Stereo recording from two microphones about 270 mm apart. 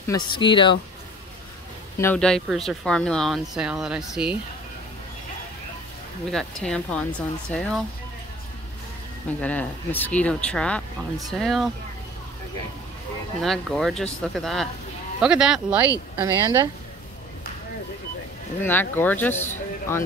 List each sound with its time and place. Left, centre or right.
0.0 s speech: centre
2.0 s speech: centre
6.3 s speech: centre
9.4 s speech: centre
13.4 s a woman's voice: centre
18.6 s speech: centre